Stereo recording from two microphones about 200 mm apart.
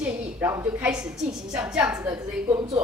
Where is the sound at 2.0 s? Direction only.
15° right (ahead or behind).